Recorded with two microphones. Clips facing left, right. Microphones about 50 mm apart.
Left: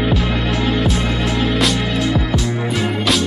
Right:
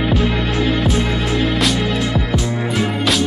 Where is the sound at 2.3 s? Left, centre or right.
Right.